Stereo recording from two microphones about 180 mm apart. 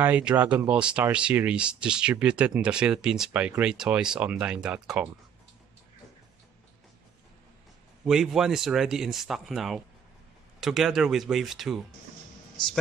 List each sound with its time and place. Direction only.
0.0 s speech: 5° right (ahead or behind)
8.0 s speech: 5° right (ahead or behind)
12.6 s speech: 25° left (ahead or behind)